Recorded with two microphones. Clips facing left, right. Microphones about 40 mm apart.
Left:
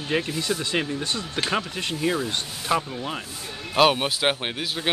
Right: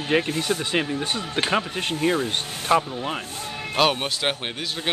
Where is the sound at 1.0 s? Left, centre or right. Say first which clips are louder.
Right 2 dB; right.